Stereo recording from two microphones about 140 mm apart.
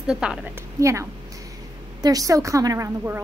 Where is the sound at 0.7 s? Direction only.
20° right (ahead or behind).